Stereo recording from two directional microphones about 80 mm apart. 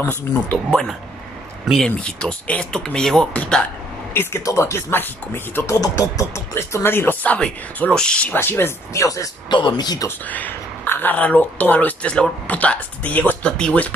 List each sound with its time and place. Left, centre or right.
0.3 s speech: centre
4.1 s speech: left
5.8 s speech: left
7.3 s speech: centre
8.4 s speech: left
9.0 s speech: left
9.5 s speech: left
10.0 s speech: left
13.5 s speech: centre